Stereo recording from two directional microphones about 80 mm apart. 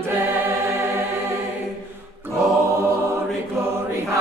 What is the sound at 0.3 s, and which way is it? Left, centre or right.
Choir, right.